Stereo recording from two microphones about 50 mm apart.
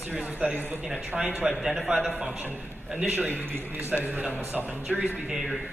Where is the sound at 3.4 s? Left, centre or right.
Right.